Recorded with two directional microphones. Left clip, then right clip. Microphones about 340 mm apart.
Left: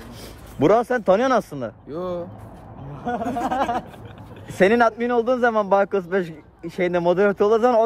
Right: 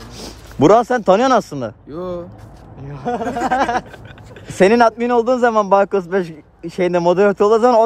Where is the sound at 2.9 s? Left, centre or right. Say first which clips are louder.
Right 4 dB; right.